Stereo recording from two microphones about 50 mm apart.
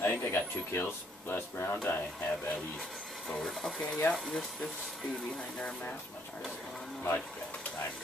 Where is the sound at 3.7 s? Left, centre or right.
Left.